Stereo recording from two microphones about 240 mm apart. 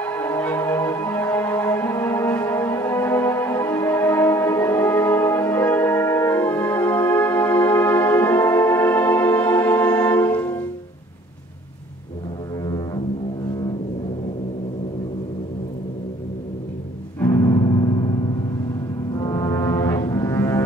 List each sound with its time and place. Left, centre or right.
0.0 s music: centre
12.6 s music: centre
17.2 s music: centre
19.1 s music: centre